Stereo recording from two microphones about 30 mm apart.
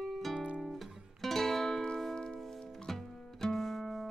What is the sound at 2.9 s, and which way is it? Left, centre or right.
Music, centre.